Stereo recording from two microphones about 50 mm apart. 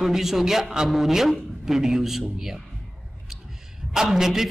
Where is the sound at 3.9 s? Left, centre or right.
Centre.